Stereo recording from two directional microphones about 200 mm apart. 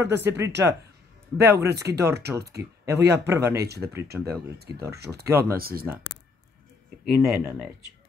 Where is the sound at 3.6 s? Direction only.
55° right (ahead or behind).